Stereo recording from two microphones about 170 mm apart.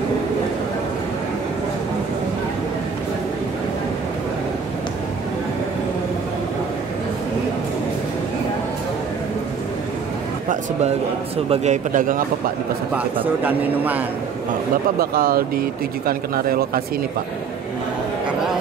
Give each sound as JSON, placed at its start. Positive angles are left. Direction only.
{"t": 11.4, "sound": "a man's voice", "side_deg": -40}
{"t": 12.9, "sound": "speech", "side_deg": -10}
{"t": 15.0, "sound": "speech", "side_deg": -60}